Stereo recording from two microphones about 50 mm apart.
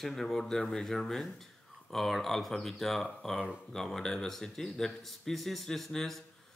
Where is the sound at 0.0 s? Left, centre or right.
Centre.